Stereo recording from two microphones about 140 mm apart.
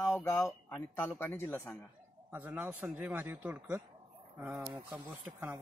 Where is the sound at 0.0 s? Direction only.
15° left (ahead or behind).